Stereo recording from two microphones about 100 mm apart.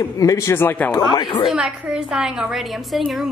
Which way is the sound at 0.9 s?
45° left (ahead or behind).